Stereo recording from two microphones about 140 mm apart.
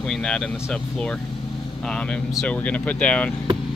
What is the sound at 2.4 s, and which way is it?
Speech, 10° left (ahead or behind).